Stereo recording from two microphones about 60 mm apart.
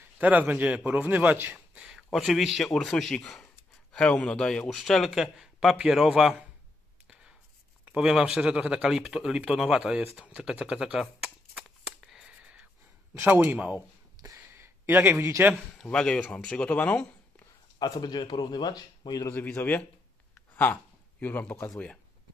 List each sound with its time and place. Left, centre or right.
0.2 s a man's voice: right
1.8 s a sound: centre
2.1 s speech: centre
2.7 s speech: centre
7.9 s speech: centre
12.3 s a sound: right
13.2 s a man's voice: right
14.2 s a sound: right
14.5 s a sound: right
15.8 s speech: centre
17.8 s speech: left
19.3 s a man's voice: left